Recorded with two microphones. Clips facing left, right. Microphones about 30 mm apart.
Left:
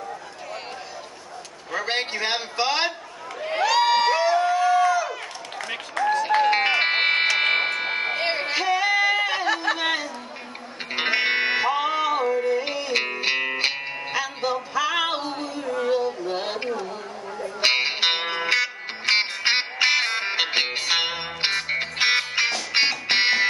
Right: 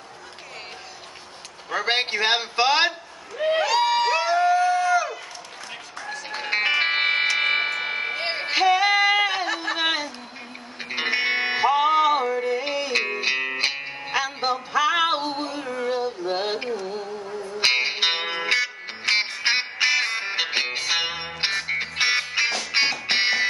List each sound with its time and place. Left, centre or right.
1.7 s a man's voice: centre
3.5 s crowd: centre
4.1 s a sound: centre
6.4 s music: centre
8.5 s music: centre
9.5 s a sound: centre
10.9 s music: centre
14.1 s music: centre; by 15.7 s right
16.0 s female singing: centre
16.5 s carnatic music: centre
17.6 s music: centre
22.5 s music: centre
22.8 s music: centre